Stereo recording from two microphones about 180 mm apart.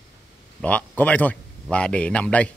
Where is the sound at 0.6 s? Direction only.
10° left (ahead or behind).